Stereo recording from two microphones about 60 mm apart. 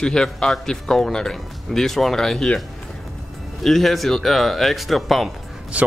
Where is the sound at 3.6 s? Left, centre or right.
Centre.